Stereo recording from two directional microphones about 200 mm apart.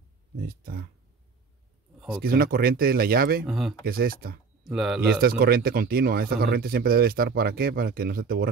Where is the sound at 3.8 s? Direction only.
50° right (ahead or behind).